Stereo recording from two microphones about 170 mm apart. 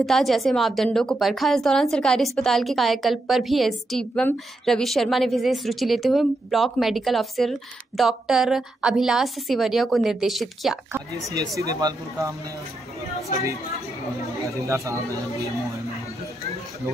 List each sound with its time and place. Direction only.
0.0 s a woman's voice: centre (ahead or behind)
10.9 s speech: 20° right (ahead or behind)
14.4 s speech: 20° right (ahead or behind)